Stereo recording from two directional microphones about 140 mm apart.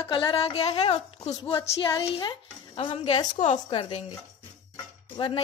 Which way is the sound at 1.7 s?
30° left (ahead or behind).